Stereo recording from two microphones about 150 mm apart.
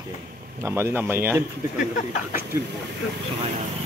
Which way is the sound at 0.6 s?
20° right (ahead or behind).